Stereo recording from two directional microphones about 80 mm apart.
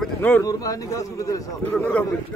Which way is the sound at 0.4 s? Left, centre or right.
Left.